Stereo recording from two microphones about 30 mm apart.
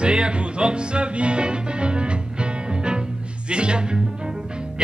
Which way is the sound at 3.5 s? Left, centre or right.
Right.